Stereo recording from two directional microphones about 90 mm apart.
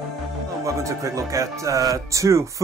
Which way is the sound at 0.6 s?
35° right (ahead or behind).